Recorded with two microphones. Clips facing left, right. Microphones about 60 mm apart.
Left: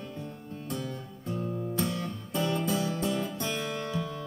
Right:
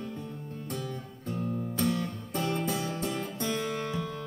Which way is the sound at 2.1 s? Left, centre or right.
Right.